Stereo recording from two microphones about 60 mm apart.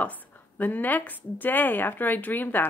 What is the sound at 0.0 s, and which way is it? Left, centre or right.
A woman's voice, left.